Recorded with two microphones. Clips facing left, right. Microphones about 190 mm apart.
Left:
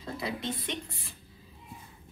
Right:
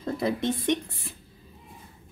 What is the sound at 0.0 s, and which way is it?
Speech, 50° right (ahead or behind).